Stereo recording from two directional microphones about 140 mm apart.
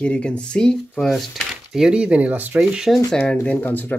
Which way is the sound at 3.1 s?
10° left (ahead or behind).